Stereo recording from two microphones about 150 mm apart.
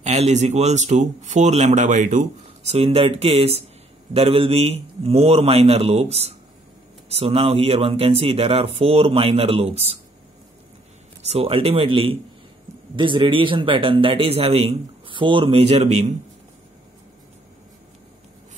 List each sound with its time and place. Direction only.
0.0 s speech: 50° right (ahead or behind)
2.4 s a man's voice: 45° right (ahead or behind)
11.2 s a man's voice: 40° right (ahead or behind)